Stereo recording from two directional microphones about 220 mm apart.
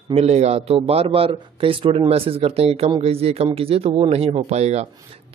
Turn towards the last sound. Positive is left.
turn(degrees=-30)  # may be behind; listen again after turning